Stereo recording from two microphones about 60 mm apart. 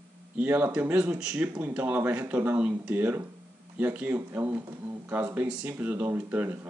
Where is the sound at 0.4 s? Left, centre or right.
Right.